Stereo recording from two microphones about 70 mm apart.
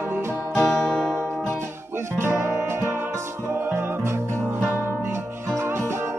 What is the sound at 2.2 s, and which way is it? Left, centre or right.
Music, right.